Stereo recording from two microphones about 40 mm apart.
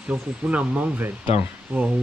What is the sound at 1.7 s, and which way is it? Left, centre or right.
Speech, right.